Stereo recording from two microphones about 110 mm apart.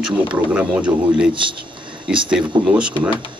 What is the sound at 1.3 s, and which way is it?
Speech, 50° right (ahead or behind).